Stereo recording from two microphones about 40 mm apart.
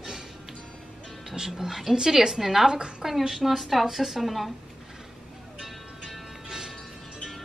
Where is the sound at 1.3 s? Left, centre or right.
Centre.